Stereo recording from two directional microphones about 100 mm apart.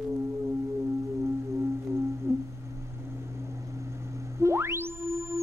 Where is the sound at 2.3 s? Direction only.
25° right (ahead or behind).